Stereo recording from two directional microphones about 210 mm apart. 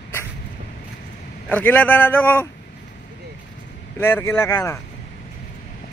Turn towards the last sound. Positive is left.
turn(degrees=10)  # may be behind; listen again after turning